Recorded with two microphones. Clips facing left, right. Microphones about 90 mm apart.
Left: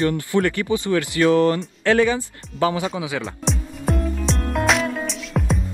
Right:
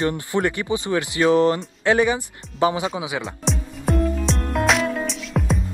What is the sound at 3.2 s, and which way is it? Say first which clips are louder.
Music: even; centre (ahead or behind).